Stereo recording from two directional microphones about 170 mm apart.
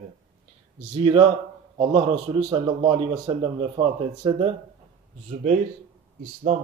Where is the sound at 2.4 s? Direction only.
20° right (ahead or behind).